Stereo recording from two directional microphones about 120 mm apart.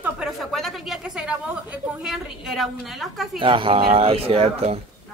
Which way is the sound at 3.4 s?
45° right (ahead or behind).